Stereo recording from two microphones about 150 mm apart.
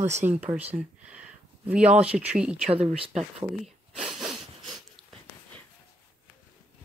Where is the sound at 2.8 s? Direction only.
Centre (ahead or behind).